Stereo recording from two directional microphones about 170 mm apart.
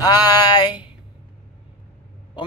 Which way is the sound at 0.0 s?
20° left (ahead or behind).